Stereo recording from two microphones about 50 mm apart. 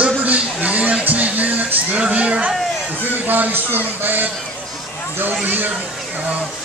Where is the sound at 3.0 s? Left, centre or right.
Right.